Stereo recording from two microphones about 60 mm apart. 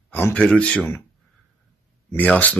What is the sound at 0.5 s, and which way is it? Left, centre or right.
Speech, centre.